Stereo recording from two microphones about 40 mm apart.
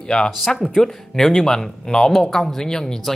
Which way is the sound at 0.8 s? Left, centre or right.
Centre.